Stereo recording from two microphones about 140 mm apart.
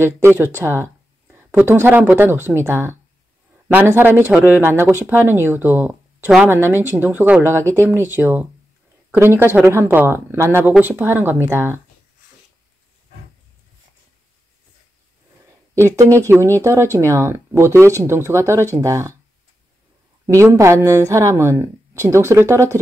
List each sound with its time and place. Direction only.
0.0 s speech: 15° right (ahead or behind)
15.7 s speech: 20° right (ahead or behind)
20.3 s speech: 20° right (ahead or behind)